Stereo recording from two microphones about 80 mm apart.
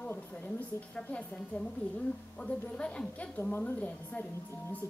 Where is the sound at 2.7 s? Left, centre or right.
Centre.